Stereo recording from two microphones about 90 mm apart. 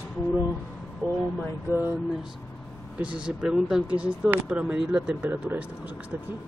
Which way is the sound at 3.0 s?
15° right (ahead or behind).